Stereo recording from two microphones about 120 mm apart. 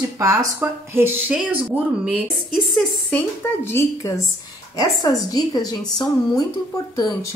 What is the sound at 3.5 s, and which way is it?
A woman's voice, 20° left (ahead or behind).